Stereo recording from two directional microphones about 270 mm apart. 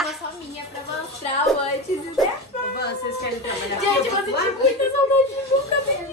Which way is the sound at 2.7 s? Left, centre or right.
Left.